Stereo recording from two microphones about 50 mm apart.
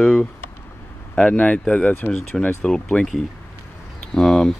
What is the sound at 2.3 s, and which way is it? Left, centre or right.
Speech, centre.